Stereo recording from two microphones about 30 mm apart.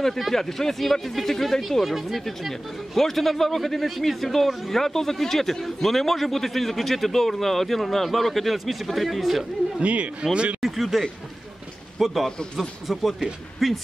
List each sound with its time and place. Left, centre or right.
0.3 s speech: centre
9.8 s speech: right
10.6 s speech: centre